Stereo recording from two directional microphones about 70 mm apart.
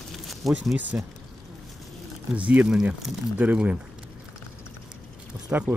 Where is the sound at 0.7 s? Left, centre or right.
Right.